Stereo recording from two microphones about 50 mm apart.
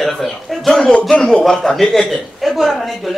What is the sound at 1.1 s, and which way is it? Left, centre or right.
A man's voice, centre.